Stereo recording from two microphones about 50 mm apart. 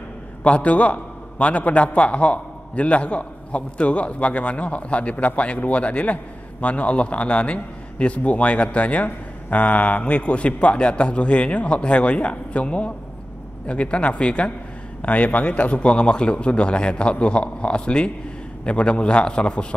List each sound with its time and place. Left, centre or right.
0.4 s a man's voice: left